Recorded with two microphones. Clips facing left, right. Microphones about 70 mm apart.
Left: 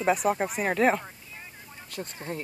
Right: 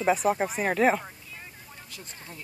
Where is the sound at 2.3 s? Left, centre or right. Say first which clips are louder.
Left 11 dB; left.